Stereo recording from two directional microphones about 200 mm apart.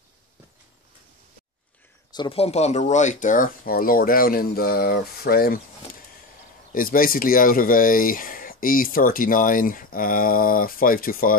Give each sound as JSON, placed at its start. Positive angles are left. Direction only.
{"t": 2.1, "sound": "speech", "side_deg": 25}
{"t": 6.7, "sound": "speech", "side_deg": 45}